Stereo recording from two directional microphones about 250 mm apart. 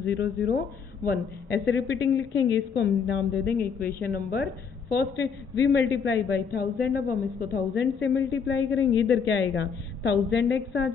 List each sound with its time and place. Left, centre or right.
0.0 s a man's voice: left
1.7 s a man's voice: left